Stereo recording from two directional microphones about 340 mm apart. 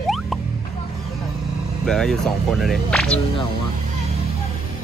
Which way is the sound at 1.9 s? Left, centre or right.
Centre.